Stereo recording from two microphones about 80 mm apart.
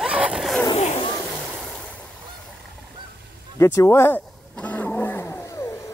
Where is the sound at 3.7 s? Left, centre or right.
Left.